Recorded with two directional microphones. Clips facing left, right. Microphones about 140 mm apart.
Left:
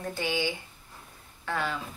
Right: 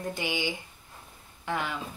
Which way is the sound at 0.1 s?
15° right (ahead or behind).